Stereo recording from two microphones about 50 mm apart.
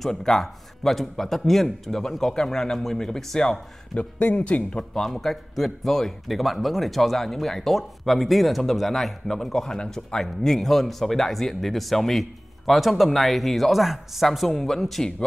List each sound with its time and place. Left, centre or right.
0.0 s a man's voice: centre
3.9 s speech: left
4.9 s a man's voice: centre